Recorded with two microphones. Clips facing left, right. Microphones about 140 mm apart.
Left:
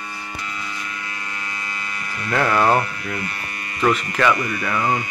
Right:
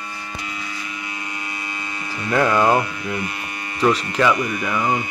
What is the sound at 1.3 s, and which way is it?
Hum, 20° right (ahead or behind).